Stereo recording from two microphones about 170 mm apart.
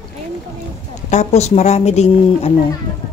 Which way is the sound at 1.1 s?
40° left (ahead or behind).